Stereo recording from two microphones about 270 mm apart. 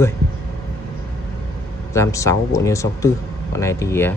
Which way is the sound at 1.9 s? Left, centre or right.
Centre.